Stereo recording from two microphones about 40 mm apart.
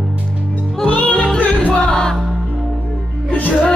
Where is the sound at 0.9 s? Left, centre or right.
Left.